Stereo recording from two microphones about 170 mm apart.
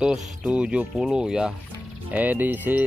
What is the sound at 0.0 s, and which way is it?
Speech, 5° right (ahead or behind).